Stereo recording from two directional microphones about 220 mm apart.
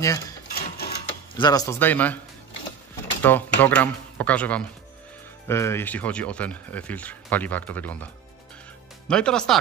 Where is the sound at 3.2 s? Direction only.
10° left (ahead or behind).